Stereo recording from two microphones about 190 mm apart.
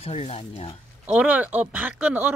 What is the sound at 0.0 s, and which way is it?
Speech, 30° left (ahead or behind).